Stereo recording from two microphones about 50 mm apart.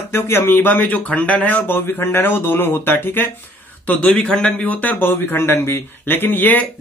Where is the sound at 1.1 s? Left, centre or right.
Left.